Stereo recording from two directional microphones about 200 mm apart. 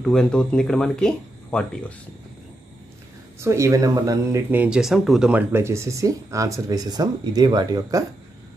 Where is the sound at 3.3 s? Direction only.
15° right (ahead or behind).